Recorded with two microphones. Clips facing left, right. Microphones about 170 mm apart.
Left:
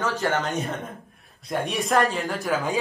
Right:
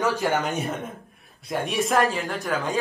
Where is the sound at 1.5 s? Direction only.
Centre (ahead or behind).